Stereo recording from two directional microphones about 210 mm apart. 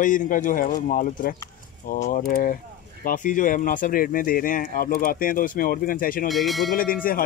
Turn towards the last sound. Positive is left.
turn(degrees=45)  # may be behind; listen again after turning